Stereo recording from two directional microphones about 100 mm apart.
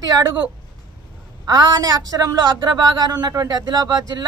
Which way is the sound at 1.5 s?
40° right (ahead or behind).